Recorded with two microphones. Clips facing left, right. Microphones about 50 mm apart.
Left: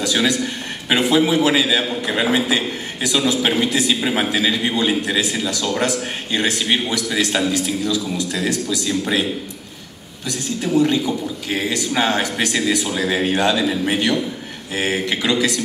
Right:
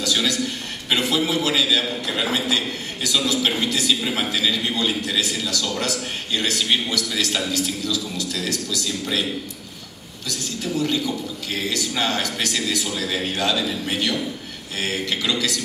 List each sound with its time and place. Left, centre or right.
0.0 s a man's voice: centre